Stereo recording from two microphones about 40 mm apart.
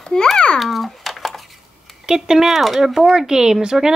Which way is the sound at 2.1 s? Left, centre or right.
Centre.